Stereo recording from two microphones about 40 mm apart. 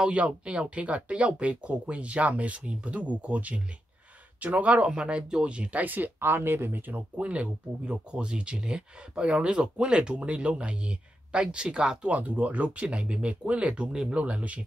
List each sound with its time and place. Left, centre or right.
0.0 s speech: right
4.9 s speech: right
6.1 s speech: right
7.2 s speech: right
12.1 s speech: right